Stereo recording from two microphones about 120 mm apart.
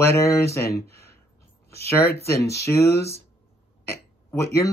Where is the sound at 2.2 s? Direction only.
25° left (ahead or behind).